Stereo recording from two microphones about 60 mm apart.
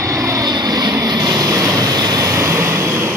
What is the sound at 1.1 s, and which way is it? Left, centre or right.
Vehicle, right.